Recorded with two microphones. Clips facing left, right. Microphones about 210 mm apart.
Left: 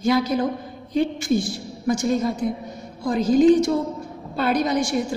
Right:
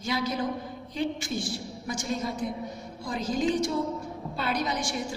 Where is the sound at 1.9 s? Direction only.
50° left (ahead or behind).